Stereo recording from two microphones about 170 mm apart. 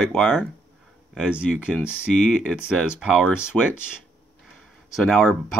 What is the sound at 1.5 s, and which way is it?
Speech, 10° left (ahead or behind).